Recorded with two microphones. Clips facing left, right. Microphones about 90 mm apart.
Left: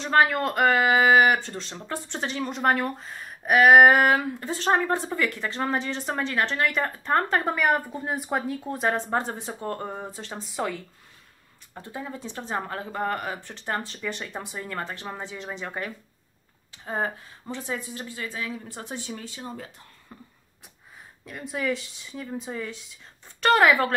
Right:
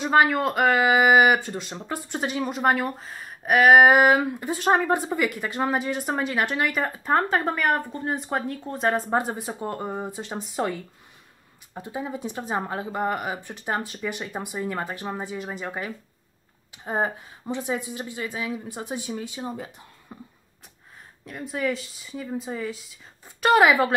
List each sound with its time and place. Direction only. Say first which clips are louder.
0.0 s speech: right 2 dB; 10° right (ahead or behind)
11.7 s speech: right 4 dB; 15° right (ahead or behind)
16.7 s speech: right 3 dB; 20° right (ahead or behind)
21.3 s speech: right 1 dB; centre (ahead or behind)